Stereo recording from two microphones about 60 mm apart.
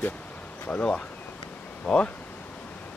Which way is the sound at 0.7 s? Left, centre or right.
Centre.